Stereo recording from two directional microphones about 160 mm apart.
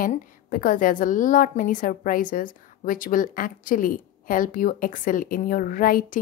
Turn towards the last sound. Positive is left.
turn(degrees=65)  # may be behind; listen again after turning